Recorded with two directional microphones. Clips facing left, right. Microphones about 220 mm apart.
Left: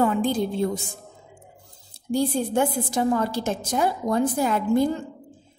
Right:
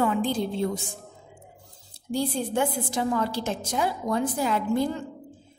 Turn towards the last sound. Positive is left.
turn(degrees=45)  # may be behind; listen again after turning